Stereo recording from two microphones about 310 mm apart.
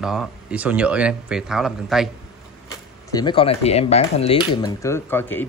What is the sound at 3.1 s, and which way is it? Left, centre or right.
Speech, centre.